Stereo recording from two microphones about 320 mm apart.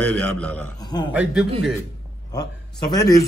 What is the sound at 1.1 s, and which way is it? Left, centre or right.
Speech, centre.